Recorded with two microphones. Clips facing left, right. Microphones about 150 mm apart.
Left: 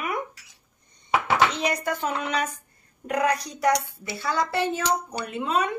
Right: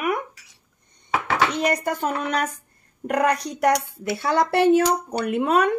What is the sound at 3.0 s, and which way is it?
Speech, 60° right (ahead or behind).